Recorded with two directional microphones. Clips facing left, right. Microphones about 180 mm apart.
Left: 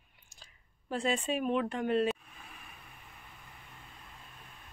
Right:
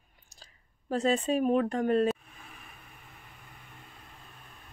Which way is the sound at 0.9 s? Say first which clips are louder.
Right 5 dB; 40° right (ahead or behind).